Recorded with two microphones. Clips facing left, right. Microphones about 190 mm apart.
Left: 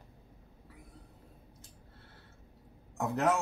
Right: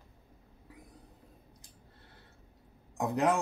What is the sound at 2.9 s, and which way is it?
Speech, 15° right (ahead or behind).